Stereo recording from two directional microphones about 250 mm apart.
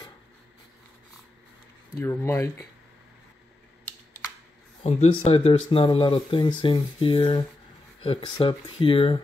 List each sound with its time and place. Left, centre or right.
2.0 s speech: centre
4.8 s speech: left